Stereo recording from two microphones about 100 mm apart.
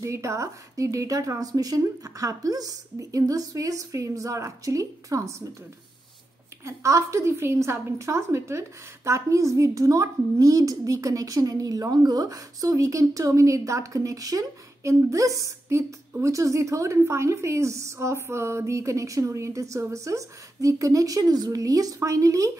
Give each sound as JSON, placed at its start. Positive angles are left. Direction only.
{"t": 0.0, "sound": "a woman's voice", "side_deg": -30}
{"t": 6.6, "sound": "a woman's voice", "side_deg": -30}